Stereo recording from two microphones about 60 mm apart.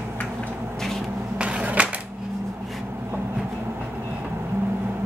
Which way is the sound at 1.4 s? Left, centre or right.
Centre.